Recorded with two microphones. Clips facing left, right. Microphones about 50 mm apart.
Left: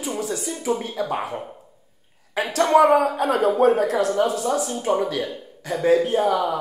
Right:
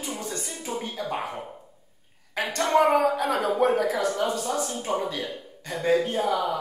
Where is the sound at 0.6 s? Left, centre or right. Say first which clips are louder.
Left 10 dB; left.